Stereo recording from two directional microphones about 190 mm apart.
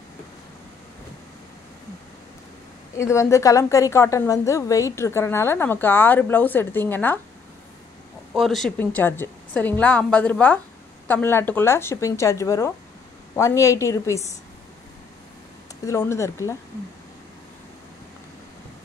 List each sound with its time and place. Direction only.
3.0 s a woman's voice: 15° left (ahead or behind)
8.3 s a woman's voice: centre (ahead or behind); by 14.3 s 15° left (ahead or behind)
15.8 s a woman's voice: 15° left (ahead or behind)